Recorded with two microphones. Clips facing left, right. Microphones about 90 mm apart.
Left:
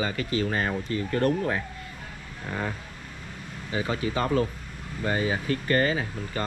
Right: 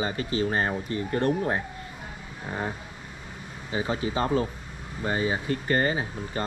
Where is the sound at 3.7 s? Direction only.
25° right (ahead or behind).